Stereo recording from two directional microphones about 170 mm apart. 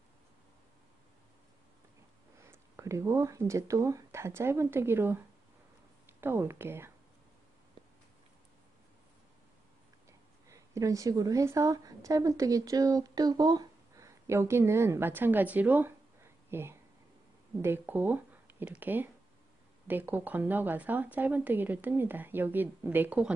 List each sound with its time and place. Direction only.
2.4 s speech: 15° right (ahead or behind)
6.2 s speech: 15° right (ahead or behind)
10.5 s a woman's voice: 20° right (ahead or behind)